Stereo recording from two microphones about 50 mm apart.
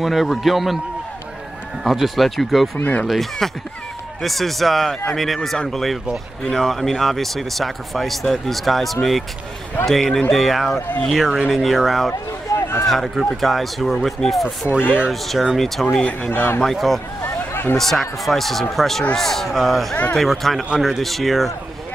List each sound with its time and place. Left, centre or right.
0.0 s speech: centre
1.9 s speech: centre
12.1 s a sound: left
12.8 s speech: centre
16.3 s speech: left
16.6 s speech: centre
17.5 s a sound: left
17.7 s speech: centre